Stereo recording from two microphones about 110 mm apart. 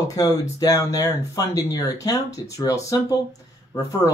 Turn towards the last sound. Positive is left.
turn(degrees=25)  # may be behind; listen again after turning